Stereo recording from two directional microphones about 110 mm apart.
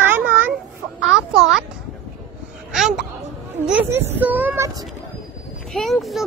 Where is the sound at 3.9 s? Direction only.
20° right (ahead or behind).